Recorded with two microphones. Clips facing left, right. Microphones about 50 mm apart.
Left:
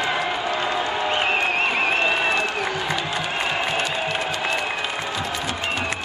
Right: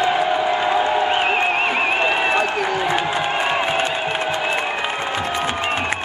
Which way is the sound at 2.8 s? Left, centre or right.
Right.